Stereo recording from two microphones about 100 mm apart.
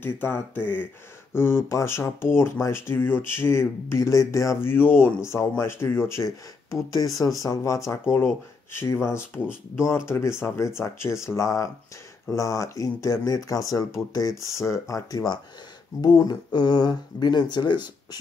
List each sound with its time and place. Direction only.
0.0 s speech: 20° left (ahead or behind); by 18.2 s 45° left (ahead or behind)